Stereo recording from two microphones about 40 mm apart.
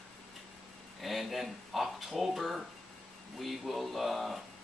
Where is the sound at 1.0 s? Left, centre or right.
Centre.